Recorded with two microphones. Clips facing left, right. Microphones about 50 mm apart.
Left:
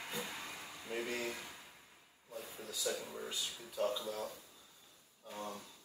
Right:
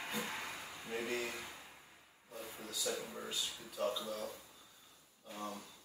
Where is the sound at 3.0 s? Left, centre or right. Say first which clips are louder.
Even; centre.